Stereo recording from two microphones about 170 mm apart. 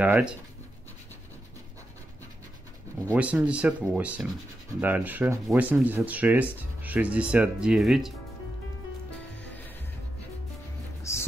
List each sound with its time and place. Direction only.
0.0 s speech: 10° right (ahead or behind)
3.2 s speech: 10° right (ahead or behind)
11.1 s music: 15° left (ahead or behind)